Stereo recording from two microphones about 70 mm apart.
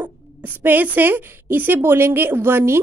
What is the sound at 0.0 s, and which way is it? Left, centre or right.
Speech, right.